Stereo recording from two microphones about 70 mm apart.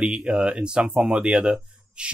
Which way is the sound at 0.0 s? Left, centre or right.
Centre.